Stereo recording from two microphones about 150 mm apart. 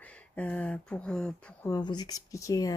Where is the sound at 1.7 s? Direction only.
30° left (ahead or behind).